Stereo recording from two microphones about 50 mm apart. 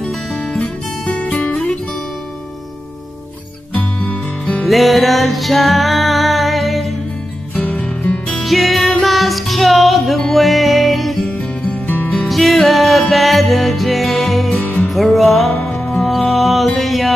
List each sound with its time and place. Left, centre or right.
0.6 s music: left
1.4 s guitar: left
3.7 s music: left
4.6 s music: centre
8.4 s music: centre
11.2 s music: left
12.3 s music: centre
14.6 s music: left
14.9 s music: centre